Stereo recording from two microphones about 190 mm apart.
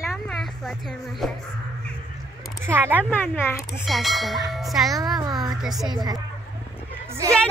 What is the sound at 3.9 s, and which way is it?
Speech, centre (ahead or behind).